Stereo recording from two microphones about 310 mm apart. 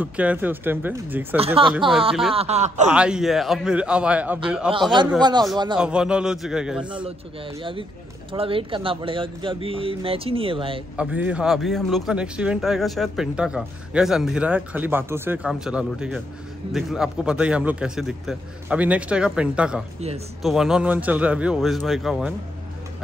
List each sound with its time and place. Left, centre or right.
0.0 s speech: centre
1.4 s a man's voice: centre
2.9 s speech: centre
5.2 s speech: centre
5.8 s speech: centre
8.3 s speech: centre
11.0 s speech: centre